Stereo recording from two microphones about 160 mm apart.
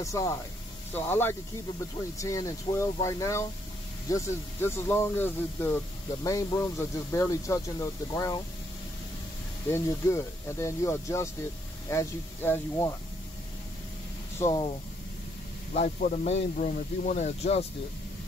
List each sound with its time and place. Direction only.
0.0 s speech: 20° left (ahead or behind)
9.7 s speech: 20° left (ahead or behind)
14.4 s speech: 25° left (ahead or behind)
15.7 s speech: 50° left (ahead or behind)